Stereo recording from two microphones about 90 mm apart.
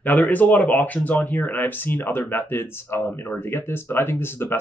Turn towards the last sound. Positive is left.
turn(degrees=25)  # may be behind; listen again after turning